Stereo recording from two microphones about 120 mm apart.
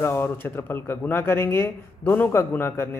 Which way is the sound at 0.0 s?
20° left (ahead or behind).